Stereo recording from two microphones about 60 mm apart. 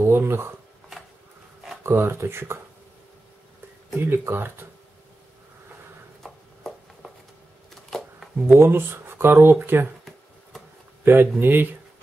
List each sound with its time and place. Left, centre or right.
0.0 s a sound: right
1.8 s speech: right
4.0 s speech: right
6.2 s a sound: centre
7.7 s camera: centre
8.5 s speech: right
11.1 s speech: right